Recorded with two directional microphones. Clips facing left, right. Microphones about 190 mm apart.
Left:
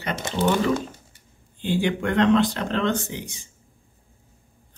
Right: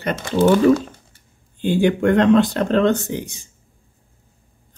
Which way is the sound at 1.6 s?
45° right (ahead or behind).